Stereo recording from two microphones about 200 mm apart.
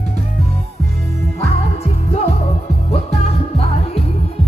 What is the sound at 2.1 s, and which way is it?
Music, 30° left (ahead or behind).